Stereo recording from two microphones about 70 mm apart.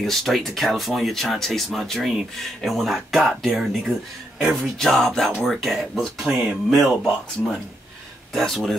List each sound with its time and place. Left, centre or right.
0.0 s speech: centre
6.2 s speech: centre
8.3 s speech: centre